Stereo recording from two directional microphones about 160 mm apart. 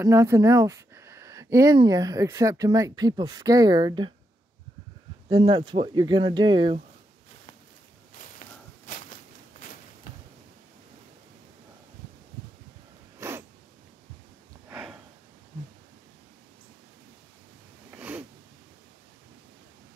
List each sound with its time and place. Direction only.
0.0 s speech: 20° right (ahead or behind)
5.3 s speech: 30° right (ahead or behind)
8.4 s walk: 55° left (ahead or behind)
9.6 s a sound: 55° left (ahead or behind)
13.2 s cat: 15° right (ahead or behind)
14.7 s snort: 5° right (ahead or behind)
17.9 s zipper: 10° right (ahead or behind)